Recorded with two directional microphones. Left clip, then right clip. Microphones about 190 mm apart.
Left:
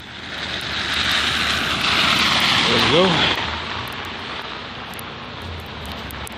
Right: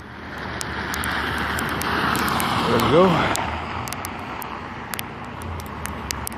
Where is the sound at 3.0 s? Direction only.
30° right (ahead or behind).